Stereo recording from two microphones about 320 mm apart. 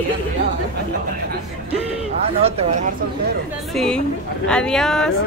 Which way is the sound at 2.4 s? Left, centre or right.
Right.